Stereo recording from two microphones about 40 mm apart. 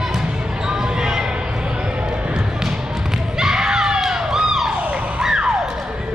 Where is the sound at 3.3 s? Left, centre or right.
Centre.